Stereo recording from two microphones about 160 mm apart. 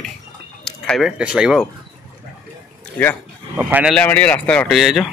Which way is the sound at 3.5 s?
10° right (ahead or behind).